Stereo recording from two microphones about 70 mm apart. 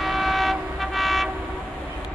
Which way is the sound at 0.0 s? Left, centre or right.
Centre.